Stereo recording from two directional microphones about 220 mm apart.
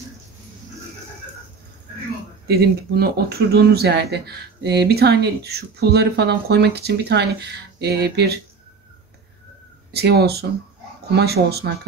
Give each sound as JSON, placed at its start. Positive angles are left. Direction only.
{"t": 2.4, "sound": "speech", "side_deg": -45}
{"t": 9.9, "sound": "speech", "side_deg": -45}